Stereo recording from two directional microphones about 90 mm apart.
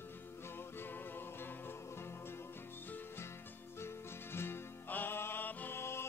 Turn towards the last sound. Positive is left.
turn(degrees=30)  # may be behind; listen again after turning